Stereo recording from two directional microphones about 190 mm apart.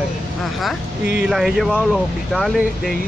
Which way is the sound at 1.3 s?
Centre (ahead or behind).